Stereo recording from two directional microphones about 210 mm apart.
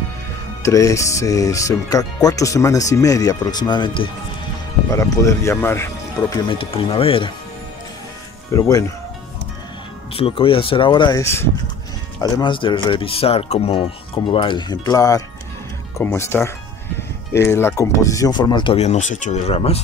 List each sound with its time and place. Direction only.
0.6 s speech: 15° left (ahead or behind)
6.3 s speech: 25° left (ahead or behind)
8.5 s speech: 15° left (ahead or behind)
10.1 s speech: 25° left (ahead or behind)